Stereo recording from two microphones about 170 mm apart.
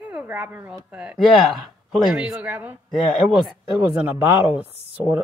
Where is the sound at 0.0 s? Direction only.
10° right (ahead or behind).